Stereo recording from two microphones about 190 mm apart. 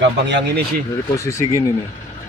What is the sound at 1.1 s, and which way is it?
Speech, 15° left (ahead or behind).